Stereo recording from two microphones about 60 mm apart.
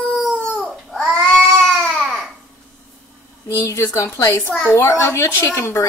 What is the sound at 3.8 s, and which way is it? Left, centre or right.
A woman's voice, left.